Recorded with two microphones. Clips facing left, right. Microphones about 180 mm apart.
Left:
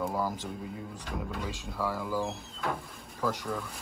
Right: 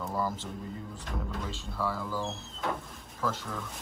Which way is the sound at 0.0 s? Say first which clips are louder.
Left 1 dB; 10° left (ahead or behind).